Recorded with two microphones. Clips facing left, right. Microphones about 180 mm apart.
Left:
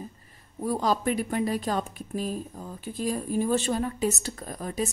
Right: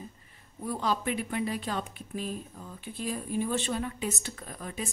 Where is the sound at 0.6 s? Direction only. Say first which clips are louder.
Left 5 dB; 40° left (ahead or behind).